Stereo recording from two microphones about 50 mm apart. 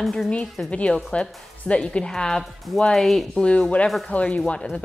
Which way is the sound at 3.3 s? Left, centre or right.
Left.